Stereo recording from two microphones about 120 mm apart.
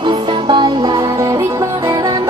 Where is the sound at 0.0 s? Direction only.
40° right (ahead or behind).